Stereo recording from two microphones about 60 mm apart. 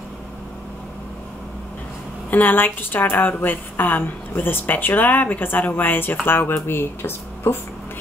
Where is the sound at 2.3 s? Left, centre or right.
Left.